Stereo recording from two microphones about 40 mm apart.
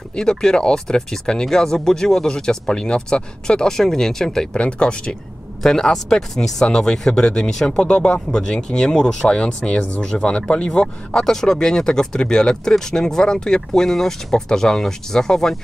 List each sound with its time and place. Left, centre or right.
0.1 s speech: centre
4.6 s speech: left
5.6 s speech: centre